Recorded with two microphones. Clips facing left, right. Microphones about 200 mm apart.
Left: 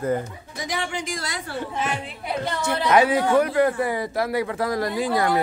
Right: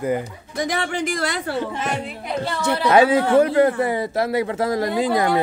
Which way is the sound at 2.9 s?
25° right (ahead or behind).